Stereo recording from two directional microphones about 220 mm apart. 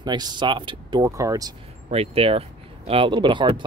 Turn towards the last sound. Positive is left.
turn(degrees=-20)  # may be behind; listen again after turning